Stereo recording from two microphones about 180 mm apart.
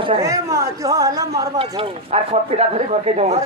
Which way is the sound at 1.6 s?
35° right (ahead or behind).